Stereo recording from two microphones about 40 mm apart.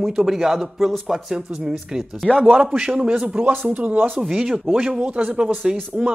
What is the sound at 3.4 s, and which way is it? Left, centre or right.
Speech, right.